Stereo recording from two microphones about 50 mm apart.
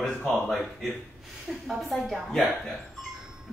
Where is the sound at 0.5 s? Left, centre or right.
Centre.